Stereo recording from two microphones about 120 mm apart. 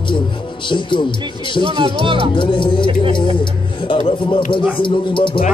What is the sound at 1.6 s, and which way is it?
Speech, 45° right (ahead or behind).